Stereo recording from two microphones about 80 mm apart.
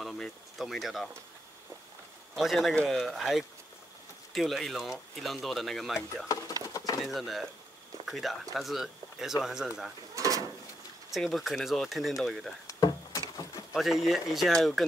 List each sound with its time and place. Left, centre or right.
0.0 s speech: centre
2.3 s speech: centre
6.2 s speech: left
7.0 s speech: centre
10.1 s drawer open or close: right
11.1 s speech: centre
12.6 s a sound: left
13.7 s speech: centre